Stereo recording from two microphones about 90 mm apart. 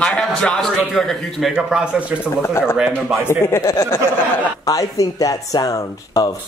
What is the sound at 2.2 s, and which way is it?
Speech, 30° left (ahead or behind).